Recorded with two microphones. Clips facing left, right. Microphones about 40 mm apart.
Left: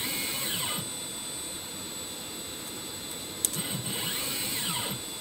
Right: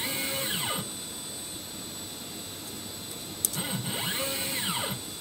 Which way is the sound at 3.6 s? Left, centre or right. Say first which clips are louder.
Right 3 dB; centre.